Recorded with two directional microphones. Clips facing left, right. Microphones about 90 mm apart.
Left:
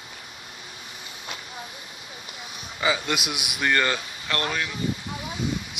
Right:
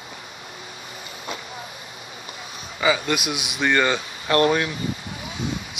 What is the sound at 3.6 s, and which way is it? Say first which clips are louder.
Speech: right 3 dB; 5° right (ahead or behind).